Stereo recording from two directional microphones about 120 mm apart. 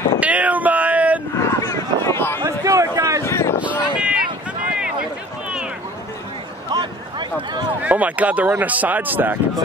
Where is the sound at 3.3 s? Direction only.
20° left (ahead or behind).